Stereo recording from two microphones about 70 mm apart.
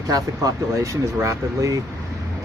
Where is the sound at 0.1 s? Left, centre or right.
Right.